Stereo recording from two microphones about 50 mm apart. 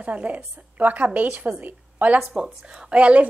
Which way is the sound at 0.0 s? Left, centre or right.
Right.